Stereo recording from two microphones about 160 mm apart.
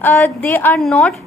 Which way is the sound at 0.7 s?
5° left (ahead or behind).